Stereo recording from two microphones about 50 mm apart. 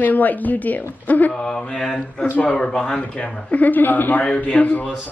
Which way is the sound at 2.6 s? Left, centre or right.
Centre.